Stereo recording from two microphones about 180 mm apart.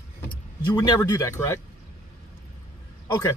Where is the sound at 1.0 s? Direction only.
15° left (ahead or behind).